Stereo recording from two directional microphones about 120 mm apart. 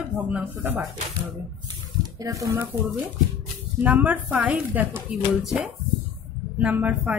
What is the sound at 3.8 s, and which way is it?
Speech, 15° right (ahead or behind).